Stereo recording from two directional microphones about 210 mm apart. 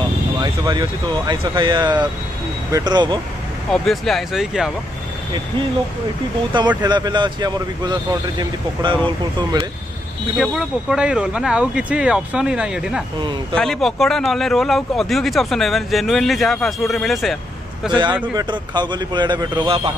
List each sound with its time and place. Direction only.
0.4 s speech: 20° right (ahead or behind)
3.7 s speech: centre (ahead or behind)
6.8 s speech: 20° right (ahead or behind)
10.3 s speech: 5° right (ahead or behind)
17.9 s speech: 20° right (ahead or behind)